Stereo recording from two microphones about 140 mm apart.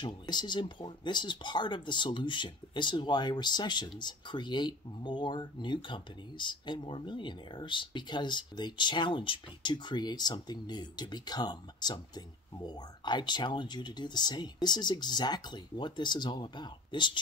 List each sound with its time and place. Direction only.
0.0 s speech: 35° left (ahead or behind)